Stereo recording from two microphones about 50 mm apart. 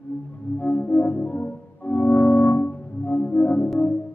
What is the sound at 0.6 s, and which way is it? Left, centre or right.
Music, left.